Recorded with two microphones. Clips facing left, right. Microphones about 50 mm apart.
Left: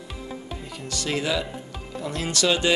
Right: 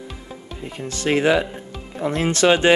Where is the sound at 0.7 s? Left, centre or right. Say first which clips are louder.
Right 8 dB; right.